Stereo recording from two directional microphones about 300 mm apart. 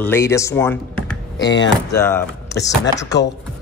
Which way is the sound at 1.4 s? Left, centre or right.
Left.